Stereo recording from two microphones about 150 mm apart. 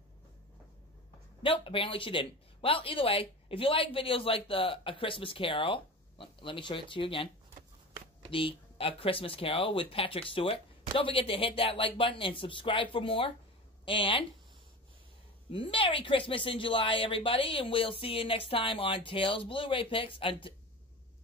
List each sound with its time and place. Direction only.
1.4 s speech: 35° left (ahead or behind)
8.3 s speech: 35° left (ahead or behind)
15.5 s speech: 35° left (ahead or behind)